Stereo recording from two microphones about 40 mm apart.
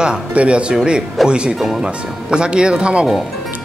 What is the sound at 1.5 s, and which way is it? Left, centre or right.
Speech, centre.